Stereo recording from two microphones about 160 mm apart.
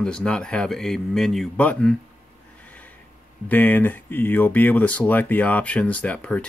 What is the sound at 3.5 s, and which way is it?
Speech, 10° left (ahead or behind).